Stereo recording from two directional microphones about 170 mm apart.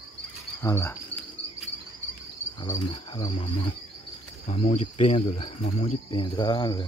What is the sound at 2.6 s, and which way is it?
Cricket, 30° left (ahead or behind).